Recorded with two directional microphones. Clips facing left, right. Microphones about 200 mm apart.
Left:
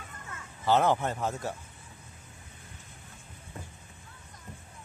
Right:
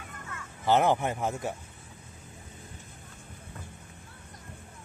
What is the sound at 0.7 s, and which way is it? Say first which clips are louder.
Speech: right 1 dB; 15° right (ahead or behind).